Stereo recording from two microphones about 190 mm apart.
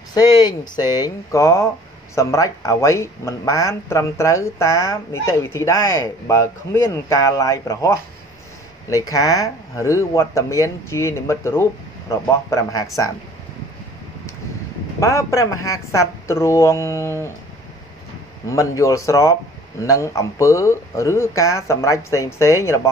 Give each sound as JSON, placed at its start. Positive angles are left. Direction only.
{"t": 0.1, "sound": "speech", "side_deg": 20}
{"t": 15.0, "sound": "speech", "side_deg": 15}
{"t": 18.5, "sound": "speech", "side_deg": 15}